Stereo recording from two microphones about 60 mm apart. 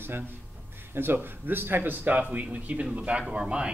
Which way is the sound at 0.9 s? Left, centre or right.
Right.